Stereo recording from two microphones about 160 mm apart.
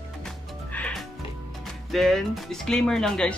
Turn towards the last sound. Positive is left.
turn(degrees=5)  # may be behind; listen again after turning